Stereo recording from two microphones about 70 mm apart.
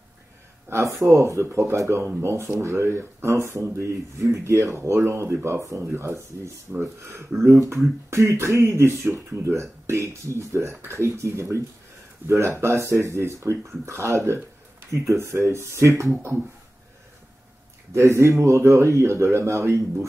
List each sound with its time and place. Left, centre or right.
0.7 s speech: right
2.6 s speech: right
17.9 s speech: right